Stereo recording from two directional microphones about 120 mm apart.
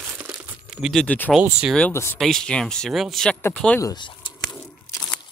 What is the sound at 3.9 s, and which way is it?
Speech, 40° left (ahead or behind).